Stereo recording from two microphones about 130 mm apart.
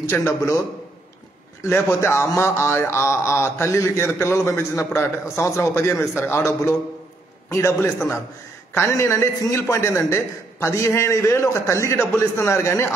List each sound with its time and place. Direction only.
0.0 s a man's voice: 20° left (ahead or behind)